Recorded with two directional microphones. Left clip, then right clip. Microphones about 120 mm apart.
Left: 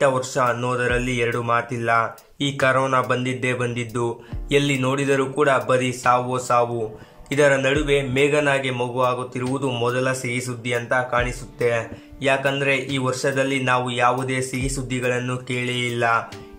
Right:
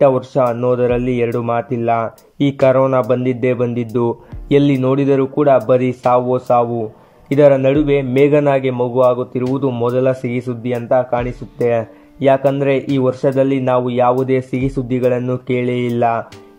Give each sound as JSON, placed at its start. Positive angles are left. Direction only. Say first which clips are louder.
{"t": 0.0, "sound": "speech", "louder": "right 6 dB", "side_deg": -45}